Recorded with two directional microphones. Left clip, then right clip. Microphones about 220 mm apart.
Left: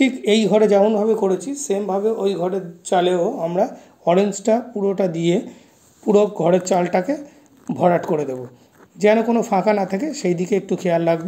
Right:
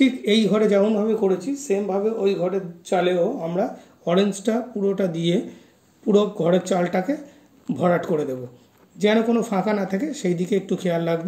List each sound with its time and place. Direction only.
0.0 s speech: 10° left (ahead or behind)
6.7 s speech: 10° left (ahead or behind)